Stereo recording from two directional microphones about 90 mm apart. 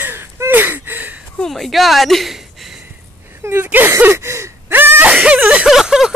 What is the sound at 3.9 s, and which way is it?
Gasp, 30° right (ahead or behind).